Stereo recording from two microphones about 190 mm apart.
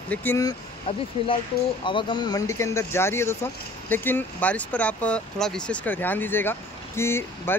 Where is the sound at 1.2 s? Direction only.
30° left (ahead or behind).